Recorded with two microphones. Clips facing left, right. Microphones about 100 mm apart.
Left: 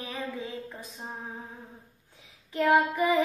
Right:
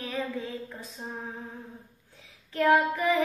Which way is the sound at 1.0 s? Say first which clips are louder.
Right 1 dB; 15° left (ahead or behind).